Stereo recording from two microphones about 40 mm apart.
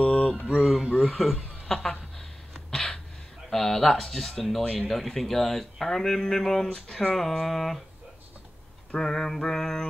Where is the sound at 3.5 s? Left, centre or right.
Centre.